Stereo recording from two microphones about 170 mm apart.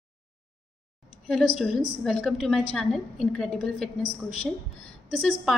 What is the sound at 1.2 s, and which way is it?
A woman's voice, centre (ahead or behind).